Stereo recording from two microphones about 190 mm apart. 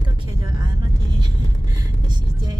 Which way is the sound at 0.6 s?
25° right (ahead or behind).